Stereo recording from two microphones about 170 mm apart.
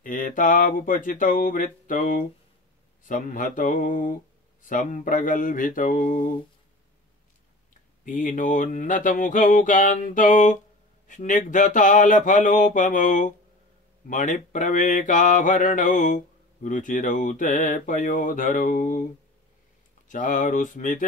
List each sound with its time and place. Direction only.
0.0 s mantra: 50° left (ahead or behind)
8.0 s mantra: 50° left (ahead or behind)
20.1 s mantra: 50° left (ahead or behind)